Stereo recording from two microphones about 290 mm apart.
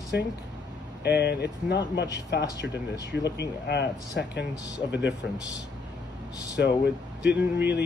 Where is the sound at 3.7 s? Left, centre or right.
Left.